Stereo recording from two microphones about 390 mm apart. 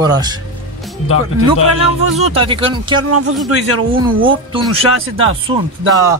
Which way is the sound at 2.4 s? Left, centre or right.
Centre.